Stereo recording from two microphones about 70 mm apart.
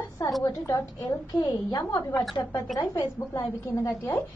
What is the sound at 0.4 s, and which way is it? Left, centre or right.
Speech, left.